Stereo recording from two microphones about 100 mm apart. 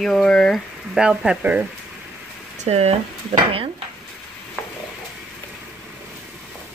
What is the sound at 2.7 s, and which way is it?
Speech, 90° right.